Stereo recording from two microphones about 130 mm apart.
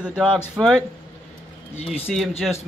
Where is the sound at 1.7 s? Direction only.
50° left (ahead or behind).